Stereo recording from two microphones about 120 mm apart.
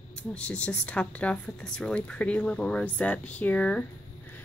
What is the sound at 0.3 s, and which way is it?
Speech, 10° left (ahead or behind).